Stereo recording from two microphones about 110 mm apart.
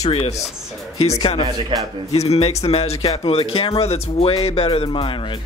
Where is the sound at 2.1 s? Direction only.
70° left (ahead or behind).